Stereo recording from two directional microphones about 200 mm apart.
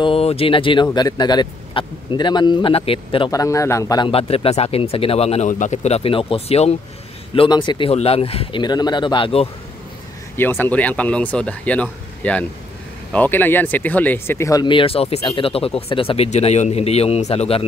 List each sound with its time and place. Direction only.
0.0 s a man's voice: 30° left (ahead or behind)
10.3 s a man's voice: 10° left (ahead or behind); by 17.6 s 30° left (ahead or behind)